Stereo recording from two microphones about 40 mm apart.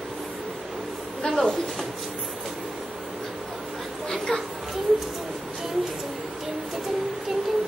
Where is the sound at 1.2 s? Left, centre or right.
Left.